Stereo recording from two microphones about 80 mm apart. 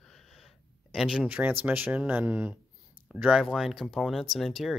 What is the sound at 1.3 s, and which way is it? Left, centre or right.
Speech, right.